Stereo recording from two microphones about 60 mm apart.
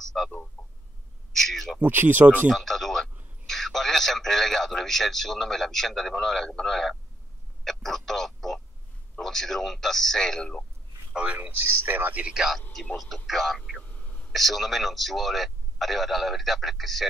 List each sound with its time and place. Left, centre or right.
0.6 s chicken: centre
1.4 s a man's voice: centre
1.8 s speech: right
2.5 s a man's voice: centre
11.1 s speech: right
11.6 s speech: right
12.2 s speech: centre
12.9 s a man's voice: centre
13.8 s a sound: left
14.3 s a man's voice: centre